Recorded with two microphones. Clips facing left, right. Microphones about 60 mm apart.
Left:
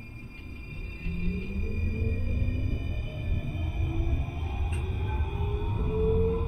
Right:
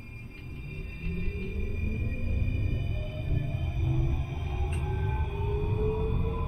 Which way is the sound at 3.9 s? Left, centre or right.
Left.